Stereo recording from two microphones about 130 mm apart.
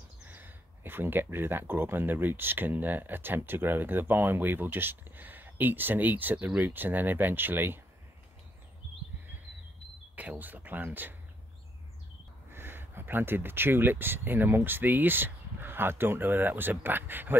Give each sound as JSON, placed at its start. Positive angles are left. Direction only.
{"t": 0.3, "sound": "speech", "side_deg": -15}
{"t": 10.1, "sound": "speech", "side_deg": -10}
{"t": 12.4, "sound": "speech", "side_deg": -15}